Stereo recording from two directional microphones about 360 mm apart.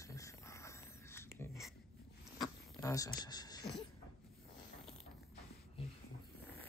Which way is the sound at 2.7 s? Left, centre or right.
Centre.